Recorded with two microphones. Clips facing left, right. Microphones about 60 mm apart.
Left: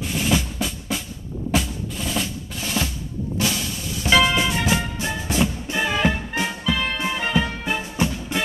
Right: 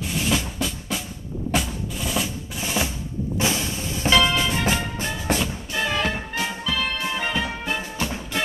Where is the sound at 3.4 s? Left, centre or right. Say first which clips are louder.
Right 1 dB; right.